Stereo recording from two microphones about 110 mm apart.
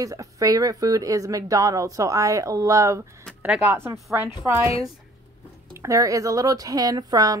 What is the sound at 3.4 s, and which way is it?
Speech, 15° right (ahead or behind).